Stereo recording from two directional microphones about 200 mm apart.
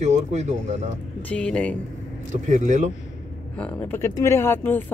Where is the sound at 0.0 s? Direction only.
35° right (ahead or behind).